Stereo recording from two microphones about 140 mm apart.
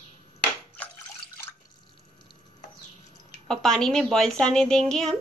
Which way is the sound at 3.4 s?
5° left (ahead or behind).